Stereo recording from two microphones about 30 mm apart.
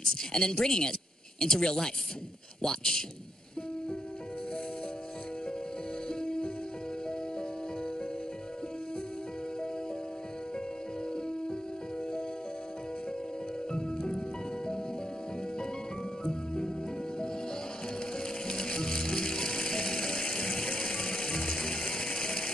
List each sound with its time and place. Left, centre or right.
0.0 s a man's voice: left
6.0 s music: left
13.7 s music: left
16.3 s music: left
18.5 s music: left
22.2 s a sound: left